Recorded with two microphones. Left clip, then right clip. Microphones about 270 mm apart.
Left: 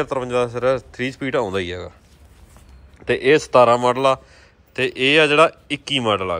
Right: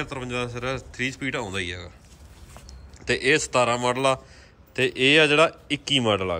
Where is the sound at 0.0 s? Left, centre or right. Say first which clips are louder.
Left 9 dB; centre.